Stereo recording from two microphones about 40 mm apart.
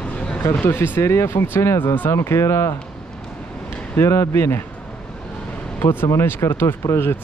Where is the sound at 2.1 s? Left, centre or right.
Left.